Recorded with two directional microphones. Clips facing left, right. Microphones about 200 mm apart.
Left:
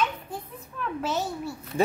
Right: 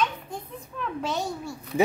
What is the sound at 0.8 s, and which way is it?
A child's voice, 5° left (ahead or behind).